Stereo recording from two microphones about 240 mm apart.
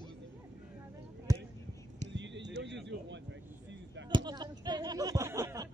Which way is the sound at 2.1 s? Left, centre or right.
Right.